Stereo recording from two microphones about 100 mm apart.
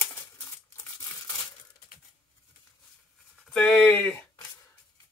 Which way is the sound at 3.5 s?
20° left (ahead or behind).